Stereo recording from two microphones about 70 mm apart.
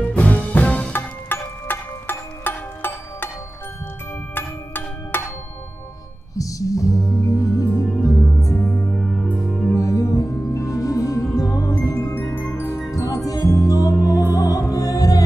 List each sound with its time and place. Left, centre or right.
0.0 s music: left
0.9 s music: left
4.4 s a sound: left
6.3 s music: left
8.5 s music: left
8.9 s music: centre
9.8 s music: left
12.0 s music: left
12.9 s music: left